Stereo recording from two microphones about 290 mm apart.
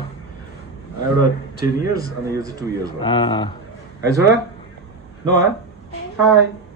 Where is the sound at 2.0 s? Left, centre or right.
Centre.